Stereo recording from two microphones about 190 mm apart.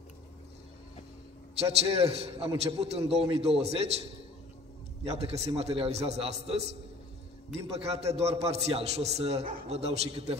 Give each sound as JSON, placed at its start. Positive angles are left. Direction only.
{"t": 1.6, "sound": "a man's voice", "side_deg": -35}
{"t": 5.0, "sound": "a man's voice", "side_deg": -35}